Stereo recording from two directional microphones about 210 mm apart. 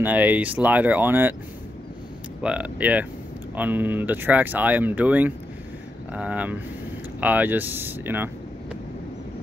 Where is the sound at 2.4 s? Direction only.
5° right (ahead or behind).